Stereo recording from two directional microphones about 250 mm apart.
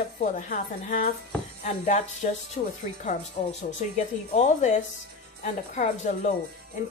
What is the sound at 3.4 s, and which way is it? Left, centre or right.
A woman's voice, left.